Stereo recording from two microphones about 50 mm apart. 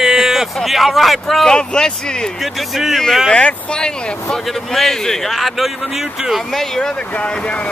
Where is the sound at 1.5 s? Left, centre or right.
Centre.